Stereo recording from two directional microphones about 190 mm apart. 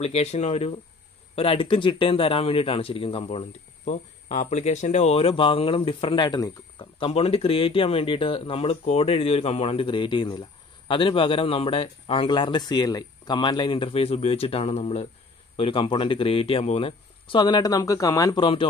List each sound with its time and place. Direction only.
0.0 s speech: 35° left (ahead or behind)